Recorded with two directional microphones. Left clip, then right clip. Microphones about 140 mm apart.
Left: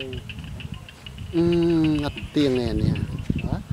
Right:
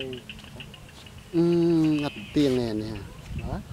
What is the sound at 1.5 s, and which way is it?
Speech, 35° left (ahead or behind).